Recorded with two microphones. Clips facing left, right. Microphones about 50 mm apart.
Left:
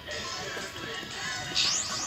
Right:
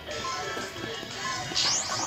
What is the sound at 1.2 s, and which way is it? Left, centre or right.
Music, right.